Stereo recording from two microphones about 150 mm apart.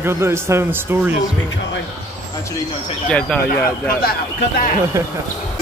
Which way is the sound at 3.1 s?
5° left (ahead or behind).